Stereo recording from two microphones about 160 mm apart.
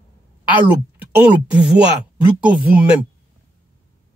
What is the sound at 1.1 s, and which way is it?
Speech, 10° right (ahead or behind).